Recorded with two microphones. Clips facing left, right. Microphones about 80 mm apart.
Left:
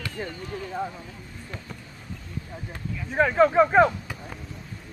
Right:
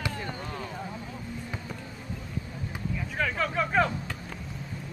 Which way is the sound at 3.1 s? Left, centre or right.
Left.